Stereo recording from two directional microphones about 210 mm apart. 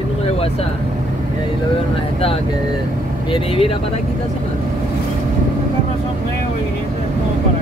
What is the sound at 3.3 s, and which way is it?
Speech, 25° left (ahead or behind).